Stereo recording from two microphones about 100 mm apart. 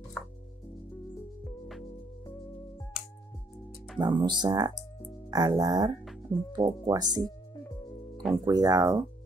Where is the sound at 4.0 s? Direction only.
50° right (ahead or behind).